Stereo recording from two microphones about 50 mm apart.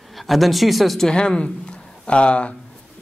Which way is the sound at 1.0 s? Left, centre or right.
Centre.